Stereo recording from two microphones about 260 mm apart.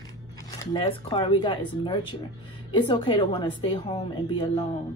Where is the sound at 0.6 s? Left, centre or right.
Centre.